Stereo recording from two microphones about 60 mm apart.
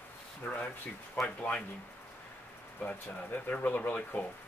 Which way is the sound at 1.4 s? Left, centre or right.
Left.